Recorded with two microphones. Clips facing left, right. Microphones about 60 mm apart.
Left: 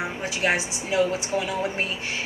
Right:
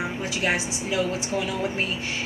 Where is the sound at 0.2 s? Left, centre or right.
Left.